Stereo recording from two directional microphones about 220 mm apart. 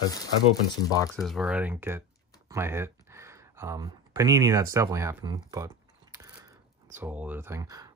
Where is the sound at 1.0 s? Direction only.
5° left (ahead or behind).